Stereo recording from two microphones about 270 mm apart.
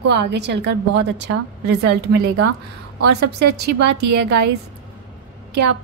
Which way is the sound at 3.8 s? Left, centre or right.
Right.